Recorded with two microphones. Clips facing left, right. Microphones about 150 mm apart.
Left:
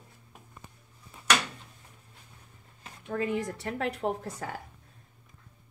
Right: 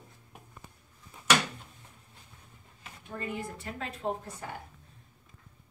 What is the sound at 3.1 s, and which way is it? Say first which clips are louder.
A woman's voice: left 7 dB; 90° left.